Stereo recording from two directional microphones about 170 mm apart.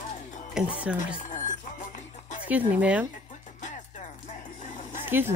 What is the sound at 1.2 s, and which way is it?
Music, 50° left (ahead or behind).